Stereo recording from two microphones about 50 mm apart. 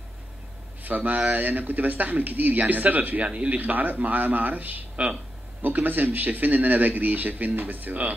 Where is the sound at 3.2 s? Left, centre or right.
Right.